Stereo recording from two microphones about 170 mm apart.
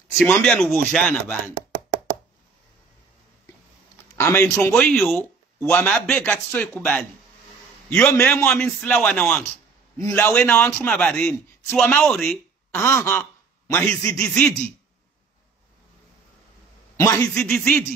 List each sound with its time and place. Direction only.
0.2 s speech: 5° left (ahead or behind)
4.2 s a man's voice: 15° left (ahead or behind)
9.9 s a man's voice: 20° left (ahead or behind); by 12.8 s 5° left (ahead or behind)
12.8 s a man's voice: 15° left (ahead or behind)
16.9 s a man's voice: 15° left (ahead or behind)
17.3 s speech: 5° left (ahead or behind)